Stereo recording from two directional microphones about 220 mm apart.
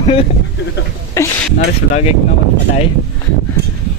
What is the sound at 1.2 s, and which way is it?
Speech, 15° left (ahead or behind).